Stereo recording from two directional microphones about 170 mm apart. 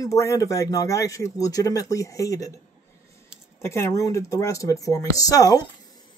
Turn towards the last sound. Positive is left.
turn(degrees=20)  # may be behind; listen again after turning